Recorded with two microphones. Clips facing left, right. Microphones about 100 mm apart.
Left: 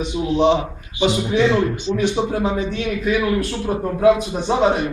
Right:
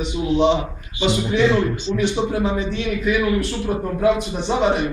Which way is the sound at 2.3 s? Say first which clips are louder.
Left 1 dB; 45° left (ahead or behind).